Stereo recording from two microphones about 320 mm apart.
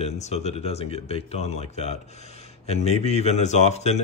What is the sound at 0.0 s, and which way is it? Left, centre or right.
Speech, centre.